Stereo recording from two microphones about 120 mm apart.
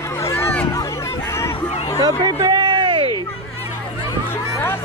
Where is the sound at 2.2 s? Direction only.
40° right (ahead or behind).